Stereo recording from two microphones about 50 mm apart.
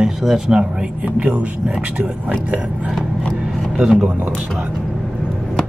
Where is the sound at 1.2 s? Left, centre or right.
Right.